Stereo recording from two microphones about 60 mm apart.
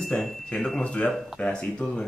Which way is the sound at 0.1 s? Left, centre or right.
Centre.